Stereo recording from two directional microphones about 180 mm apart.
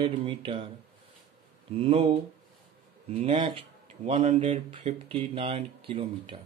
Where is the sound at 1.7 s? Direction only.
30° right (ahead or behind).